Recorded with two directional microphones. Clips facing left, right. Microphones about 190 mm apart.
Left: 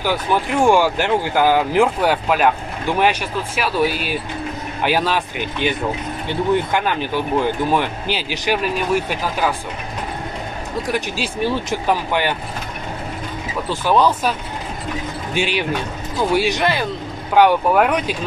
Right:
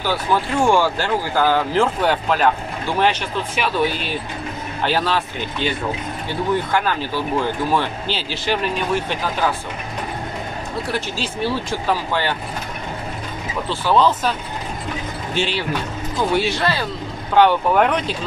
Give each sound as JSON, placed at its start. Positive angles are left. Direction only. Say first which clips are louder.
{"t": 0.0, "sound": "speech", "louder": "left 1 dB", "side_deg": 15}
{"t": 10.9, "sound": "speech", "louder": "left 4 dB", "side_deg": 15}
{"t": 13.7, "sound": "speech", "louder": "left 1 dB", "side_deg": 15}
{"t": 15.3, "sound": "speech", "louder": "left 2 dB", "side_deg": 10}